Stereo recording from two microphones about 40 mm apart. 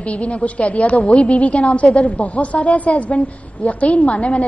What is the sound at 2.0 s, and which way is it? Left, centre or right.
A woman's voice, left.